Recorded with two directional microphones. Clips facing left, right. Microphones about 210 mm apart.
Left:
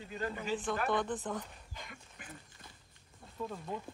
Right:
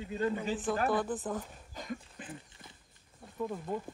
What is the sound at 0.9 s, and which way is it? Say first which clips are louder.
Speech: right 2 dB; 5° right (ahead or behind).